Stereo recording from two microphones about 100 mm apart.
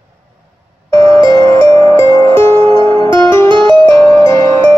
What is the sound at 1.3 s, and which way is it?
Music, 35° left (ahead or behind).